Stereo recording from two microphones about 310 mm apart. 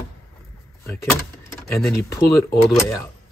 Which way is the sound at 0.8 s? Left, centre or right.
Centre.